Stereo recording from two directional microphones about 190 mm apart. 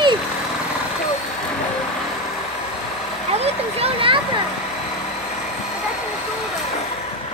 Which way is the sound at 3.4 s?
30° right (ahead or behind).